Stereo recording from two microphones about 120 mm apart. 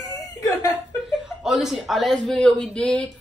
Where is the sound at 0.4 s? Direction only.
30° left (ahead or behind).